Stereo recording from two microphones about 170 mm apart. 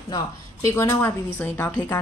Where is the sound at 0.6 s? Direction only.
15° left (ahead or behind).